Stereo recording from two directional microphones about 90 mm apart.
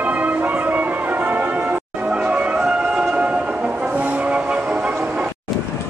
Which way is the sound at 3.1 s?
15° right (ahead or behind).